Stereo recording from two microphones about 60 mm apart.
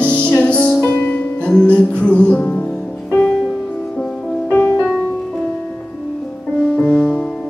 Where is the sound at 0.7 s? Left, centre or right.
Left.